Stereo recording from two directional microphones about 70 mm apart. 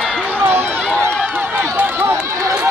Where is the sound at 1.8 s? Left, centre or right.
Right.